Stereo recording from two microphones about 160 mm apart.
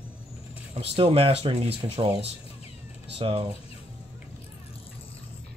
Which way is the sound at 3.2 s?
35° right (ahead or behind).